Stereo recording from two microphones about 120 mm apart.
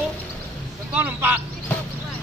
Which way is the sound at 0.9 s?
15° right (ahead or behind).